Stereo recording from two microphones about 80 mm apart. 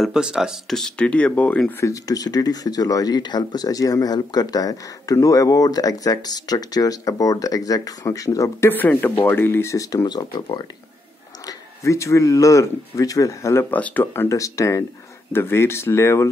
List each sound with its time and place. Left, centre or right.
0.1 s speech: centre
0.7 s speech: centre
1.8 s speech: left
8.5 s speech: left
9.8 s speech: left
11.4 s speech: left
13.7 s speech: centre
14.3 s speech: left
15.3 s speech: left